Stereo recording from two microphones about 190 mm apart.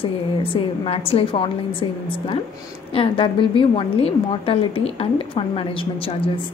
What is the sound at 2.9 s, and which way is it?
A woman's voice, 30° left (ahead or behind).